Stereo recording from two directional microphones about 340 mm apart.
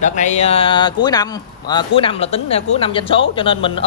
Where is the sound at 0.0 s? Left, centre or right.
Left.